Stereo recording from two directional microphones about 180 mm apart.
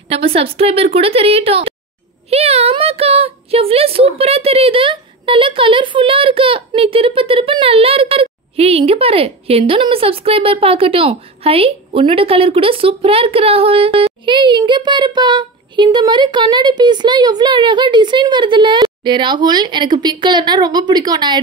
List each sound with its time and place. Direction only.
0.1 s a woman's voice: 30° right (ahead or behind)